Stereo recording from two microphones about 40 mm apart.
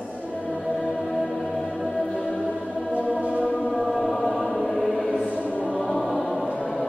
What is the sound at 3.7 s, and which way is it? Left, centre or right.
Choir, centre.